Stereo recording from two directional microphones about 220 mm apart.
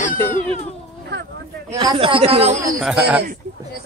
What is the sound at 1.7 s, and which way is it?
Speech, 20° right (ahead or behind).